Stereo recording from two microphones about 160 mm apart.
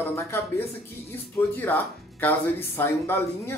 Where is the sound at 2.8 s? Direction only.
15° left (ahead or behind).